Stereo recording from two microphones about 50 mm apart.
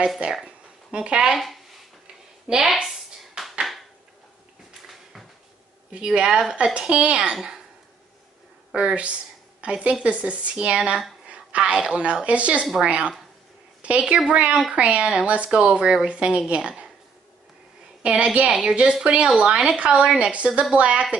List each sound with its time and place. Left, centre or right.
0.9 s a woman's voice: centre
1.3 s speech: centre
2.6 s a sound: centre
5.9 s a woman's voice: centre
8.7 s a woman's voice: right
18.0 s a woman's voice: right